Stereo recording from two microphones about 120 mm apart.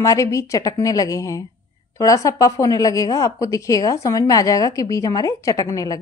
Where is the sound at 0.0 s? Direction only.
25° left (ahead or behind).